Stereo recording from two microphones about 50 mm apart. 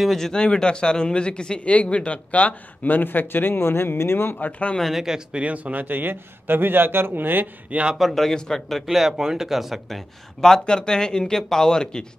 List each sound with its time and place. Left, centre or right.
0.0 s speech: centre
0.3 s speech: centre; by 4.4 s left
4.4 s speech: left
4.9 s speech: centre
5.4 s a man's voice: right
8.0 s speech: centre